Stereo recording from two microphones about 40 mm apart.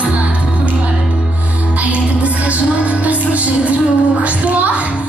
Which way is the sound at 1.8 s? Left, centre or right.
Right.